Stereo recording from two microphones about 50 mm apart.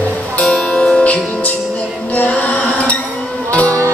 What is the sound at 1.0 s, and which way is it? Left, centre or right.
Music, left.